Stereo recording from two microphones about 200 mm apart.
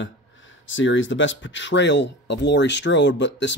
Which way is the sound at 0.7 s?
70° left (ahead or behind).